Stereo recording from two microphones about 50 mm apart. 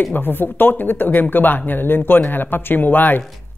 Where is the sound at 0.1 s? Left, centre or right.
Left.